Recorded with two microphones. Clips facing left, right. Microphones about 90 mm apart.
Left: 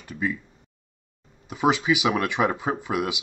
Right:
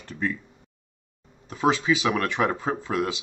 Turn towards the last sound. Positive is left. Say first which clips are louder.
# even
turn(degrees=15)  # may be behind; listen again after turning